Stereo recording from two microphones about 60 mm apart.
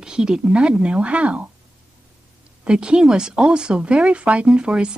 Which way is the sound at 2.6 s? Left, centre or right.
Centre.